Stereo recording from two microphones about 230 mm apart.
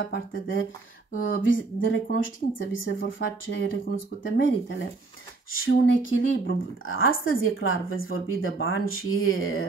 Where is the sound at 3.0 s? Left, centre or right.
Left.